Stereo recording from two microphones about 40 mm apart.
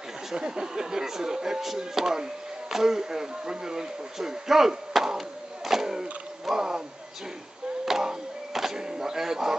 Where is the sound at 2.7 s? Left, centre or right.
Centre.